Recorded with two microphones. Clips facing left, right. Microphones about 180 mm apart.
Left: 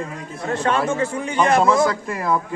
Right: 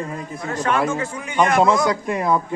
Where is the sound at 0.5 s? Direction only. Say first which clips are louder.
Left 1 dB; 30° left (ahead or behind).